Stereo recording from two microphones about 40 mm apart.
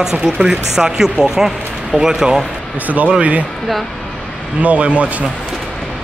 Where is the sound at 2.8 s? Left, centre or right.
Right.